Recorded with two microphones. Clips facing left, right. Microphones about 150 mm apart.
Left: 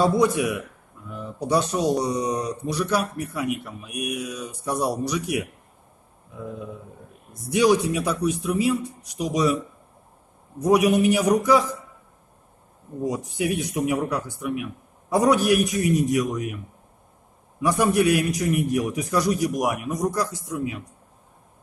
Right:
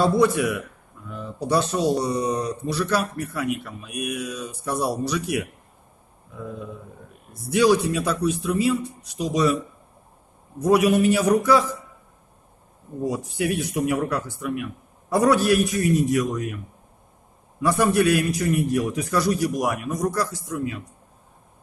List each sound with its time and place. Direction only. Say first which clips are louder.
0.0 s a man's voice: right 1 dB; 15° left (ahead or behind)
7.3 s a man's voice: right 1 dB; 20° left (ahead or behind)
10.6 s a man's voice: even; 20° left (ahead or behind)
13.0 s a man's voice: even; 15° left (ahead or behind)
17.6 s a man's voice: right 1 dB; 15° left (ahead or behind)